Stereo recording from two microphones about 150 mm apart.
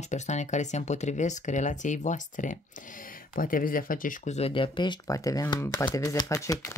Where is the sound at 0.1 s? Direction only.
50° left (ahead or behind).